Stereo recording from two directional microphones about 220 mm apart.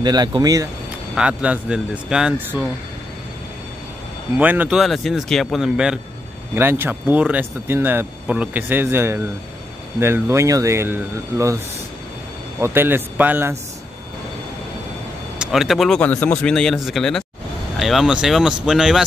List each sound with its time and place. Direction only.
0.0 s speech: 20° right (ahead or behind)
1.1 s speech: 5° right (ahead or behind)
4.4 s speech: 10° right (ahead or behind)
15.3 s speech: 5° right (ahead or behind)